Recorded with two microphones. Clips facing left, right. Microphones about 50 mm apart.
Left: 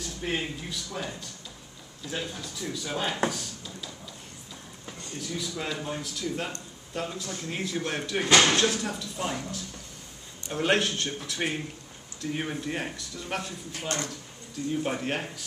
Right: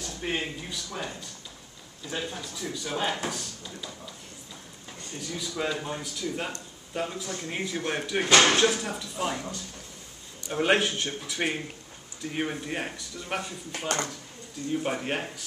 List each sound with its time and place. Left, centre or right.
0.0 s speech: centre
2.4 s speech: centre
5.5 s speech: centre
13.7 s speech: right
14.7 s speech: centre